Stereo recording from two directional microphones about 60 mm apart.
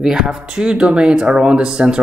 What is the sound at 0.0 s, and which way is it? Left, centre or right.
Speech, centre.